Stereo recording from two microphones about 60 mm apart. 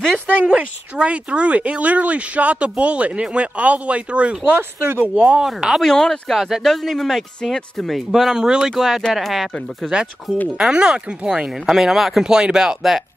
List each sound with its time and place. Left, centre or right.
0.3 s speech: right
4.5 s speech: right
5.1 s speech: centre
5.9 s speech: centre
6.3 s speech: centre
8.1 s speech: centre